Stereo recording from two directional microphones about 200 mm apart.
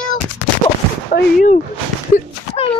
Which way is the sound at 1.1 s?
40° left (ahead or behind).